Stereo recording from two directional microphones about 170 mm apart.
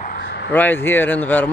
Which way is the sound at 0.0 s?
65° left (ahead or behind).